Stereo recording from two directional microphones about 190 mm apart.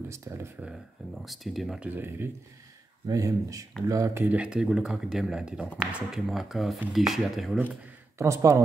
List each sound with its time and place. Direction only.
0.1 s speech: 15° right (ahead or behind)
0.7 s speech: centre (ahead or behind)
8.2 s speech: 15° right (ahead or behind)